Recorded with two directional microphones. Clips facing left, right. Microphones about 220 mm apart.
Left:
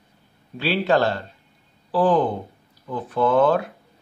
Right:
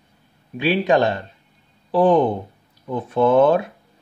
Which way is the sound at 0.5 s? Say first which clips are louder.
Right 3 dB; 15° right (ahead or behind).